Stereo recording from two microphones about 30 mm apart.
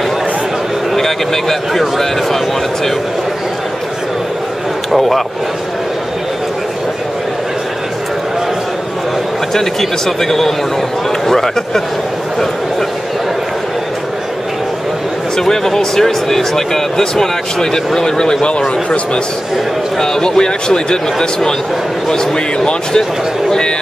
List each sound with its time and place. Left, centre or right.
0.9 s speech: centre
4.9 s speech: centre
9.5 s speech: centre
11.2 s a sound: centre
15.5 s speech: centre
20.0 s speech: left